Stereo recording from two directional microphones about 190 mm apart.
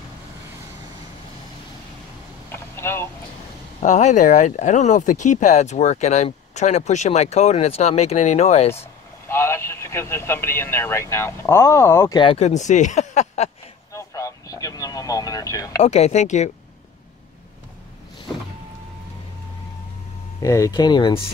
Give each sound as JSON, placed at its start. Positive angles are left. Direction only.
{"t": 2.5, "sound": "a sound", "side_deg": 10}
{"t": 3.8, "sound": "speech", "side_deg": 40}
{"t": 9.3, "sound": "speech", "side_deg": 15}
{"t": 12.2, "sound": "speech", "side_deg": 30}
{"t": 13.9, "sound": "radio", "side_deg": 15}
{"t": 15.8, "sound": "speech", "side_deg": 35}
{"t": 20.4, "sound": "speech", "side_deg": 15}